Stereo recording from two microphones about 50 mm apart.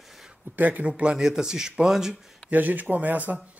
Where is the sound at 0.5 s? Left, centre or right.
Right.